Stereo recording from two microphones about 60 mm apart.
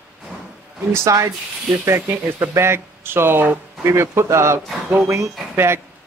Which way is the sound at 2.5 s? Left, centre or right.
Right.